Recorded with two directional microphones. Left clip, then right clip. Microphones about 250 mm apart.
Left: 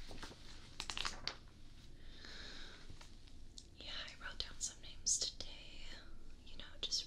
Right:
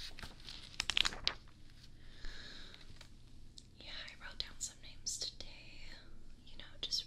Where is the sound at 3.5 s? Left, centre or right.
Centre.